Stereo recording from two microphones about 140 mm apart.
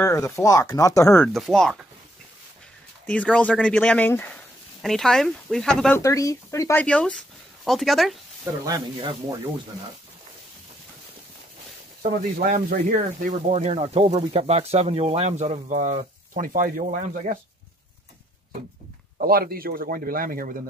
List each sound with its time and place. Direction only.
0.0 s speech: 20° left (ahead or behind)
1.2 s speech: centre (ahead or behind)
3.1 s speech: 10° left (ahead or behind)
4.8 s speech: 5° left (ahead or behind)
5.9 s speech: 20° left (ahead or behind)
6.8 s speech: 10° left (ahead or behind)
8.6 s speech: 25° right (ahead or behind)
12.4 s speech: 80° right
13.2 s speech: 55° right (ahead or behind)
16.3 s speech: 80° right
19.1 s speech: 90° right